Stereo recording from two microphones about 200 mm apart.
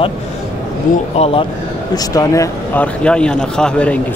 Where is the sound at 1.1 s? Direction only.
30° left (ahead or behind).